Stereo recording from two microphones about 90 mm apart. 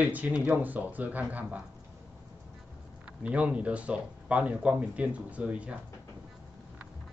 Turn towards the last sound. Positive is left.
turn(degrees=-10)  # may be behind; listen again after turning